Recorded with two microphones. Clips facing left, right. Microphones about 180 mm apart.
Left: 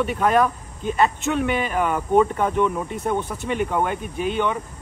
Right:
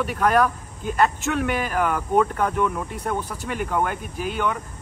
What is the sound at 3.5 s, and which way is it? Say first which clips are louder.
Speech: left 2 dB; centre (ahead or behind).